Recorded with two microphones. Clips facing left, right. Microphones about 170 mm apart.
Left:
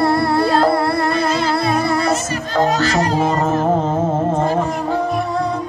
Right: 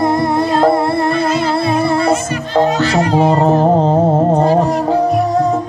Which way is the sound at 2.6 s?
40° left (ahead or behind).